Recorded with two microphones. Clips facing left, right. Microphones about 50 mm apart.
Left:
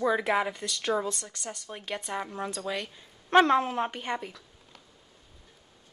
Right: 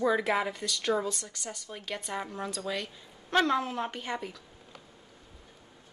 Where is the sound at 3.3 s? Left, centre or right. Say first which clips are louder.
Left 5 dB; left.